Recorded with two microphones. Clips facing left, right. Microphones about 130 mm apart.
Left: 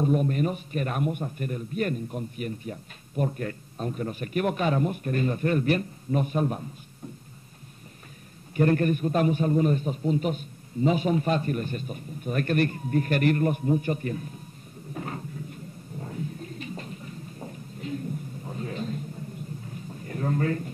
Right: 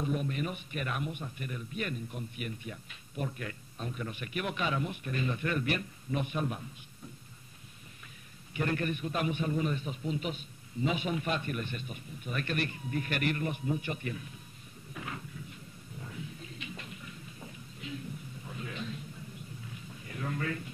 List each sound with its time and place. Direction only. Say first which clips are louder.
0.0 s a man's voice: left 9 dB; 45° left (ahead or behind)
8.5 s a man's voice: left 10 dB; 45° left (ahead or behind)
15.0 s a sound: left 7 dB; 40° left (ahead or behind)